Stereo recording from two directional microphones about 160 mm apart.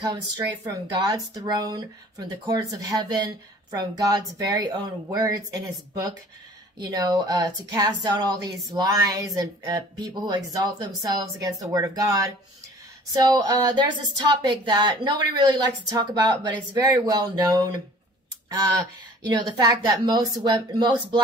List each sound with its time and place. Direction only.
1.0 s speech: 25° right (ahead or behind)
19.2 s speech: 25° right (ahead or behind)